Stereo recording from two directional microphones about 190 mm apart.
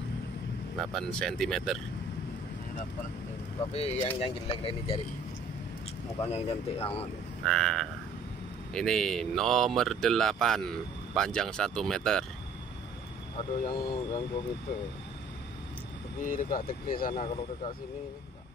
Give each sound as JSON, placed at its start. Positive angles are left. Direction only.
{"t": 0.7, "sound": "speech", "side_deg": 5}
{"t": 3.7, "sound": "speech", "side_deg": 30}
{"t": 6.2, "sound": "speech", "side_deg": 30}
{"t": 7.4, "sound": "speech", "side_deg": 5}
{"t": 13.4, "sound": "speech", "side_deg": 25}
{"t": 16.2, "sound": "speech", "side_deg": 45}
{"t": 17.1, "sound": "speech", "side_deg": 25}